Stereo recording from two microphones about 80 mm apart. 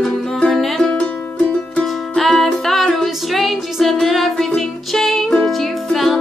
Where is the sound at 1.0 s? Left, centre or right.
Centre.